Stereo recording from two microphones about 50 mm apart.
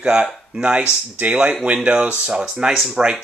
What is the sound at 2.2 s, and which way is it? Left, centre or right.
Speech, centre.